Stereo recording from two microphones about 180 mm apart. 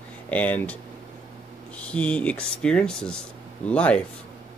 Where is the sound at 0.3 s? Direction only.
10° left (ahead or behind).